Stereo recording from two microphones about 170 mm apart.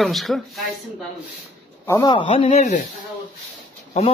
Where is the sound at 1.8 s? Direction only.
25° left (ahead or behind); by 2.8 s 40° left (ahead or behind).